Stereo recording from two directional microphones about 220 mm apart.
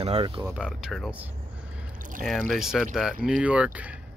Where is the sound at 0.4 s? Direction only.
10° right (ahead or behind).